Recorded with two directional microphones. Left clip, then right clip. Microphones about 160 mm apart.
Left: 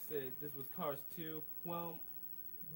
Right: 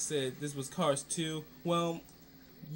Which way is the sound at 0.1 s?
15° right (ahead or behind).